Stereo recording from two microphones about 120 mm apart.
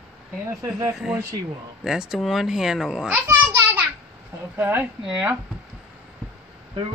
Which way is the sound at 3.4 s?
15° right (ahead or behind).